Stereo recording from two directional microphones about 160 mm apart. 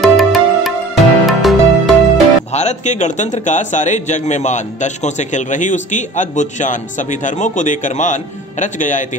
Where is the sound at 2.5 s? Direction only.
45° left (ahead or behind).